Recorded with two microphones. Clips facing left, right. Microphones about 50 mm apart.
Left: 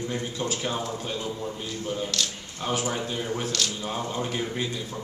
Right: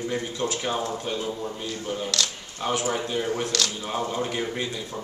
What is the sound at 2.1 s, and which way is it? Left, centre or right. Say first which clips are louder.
Speech: right 5 dB; right.